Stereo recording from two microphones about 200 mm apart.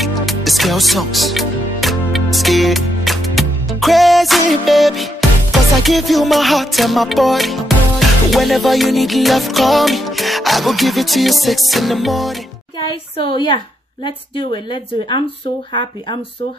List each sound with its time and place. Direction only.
0.0 s music: centre (ahead or behind)
13.2 s speech: 25° left (ahead or behind)